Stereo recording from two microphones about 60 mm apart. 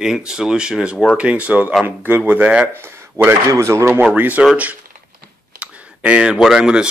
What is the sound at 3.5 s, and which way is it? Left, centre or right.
Speech, right.